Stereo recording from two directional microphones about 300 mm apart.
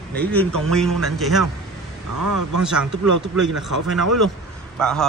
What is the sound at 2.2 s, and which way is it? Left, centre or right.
Speech, right.